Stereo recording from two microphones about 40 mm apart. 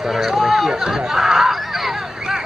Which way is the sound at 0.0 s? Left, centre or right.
Centre.